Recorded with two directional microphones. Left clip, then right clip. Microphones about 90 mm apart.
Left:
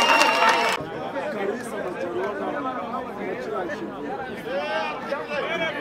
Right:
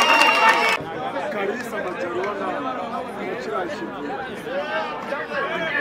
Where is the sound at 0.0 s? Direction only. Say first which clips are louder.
Right 2 dB; centre (ahead or behind).